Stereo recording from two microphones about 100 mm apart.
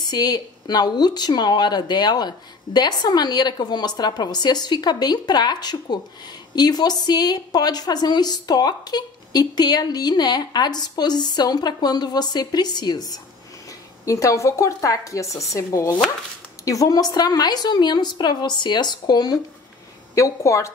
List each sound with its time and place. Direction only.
0.1 s speech: 40° left (ahead or behind)
20.2 s speech: 30° left (ahead or behind)